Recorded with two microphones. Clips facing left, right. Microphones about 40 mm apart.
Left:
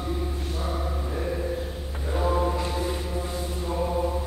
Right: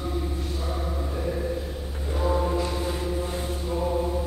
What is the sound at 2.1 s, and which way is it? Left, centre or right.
Music, centre.